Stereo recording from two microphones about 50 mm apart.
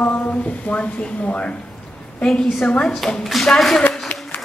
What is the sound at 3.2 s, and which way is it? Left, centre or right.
Speech, centre.